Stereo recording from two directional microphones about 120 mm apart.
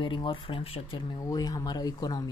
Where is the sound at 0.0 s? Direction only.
45° left (ahead or behind).